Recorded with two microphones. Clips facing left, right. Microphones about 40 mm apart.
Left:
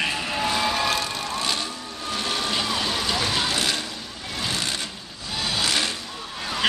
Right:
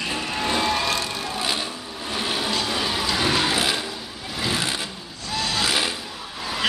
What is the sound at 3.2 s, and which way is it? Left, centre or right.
Music, right.